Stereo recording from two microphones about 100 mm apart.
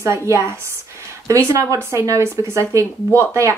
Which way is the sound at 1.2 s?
30° right (ahead or behind).